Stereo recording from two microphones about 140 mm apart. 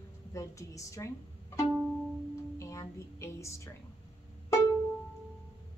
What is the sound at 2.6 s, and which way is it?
A woman's voice, 20° left (ahead or behind).